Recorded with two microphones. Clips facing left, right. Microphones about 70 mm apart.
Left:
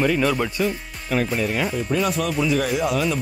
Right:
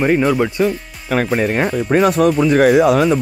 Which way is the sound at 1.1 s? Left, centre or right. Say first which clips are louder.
Right 6 dB; right.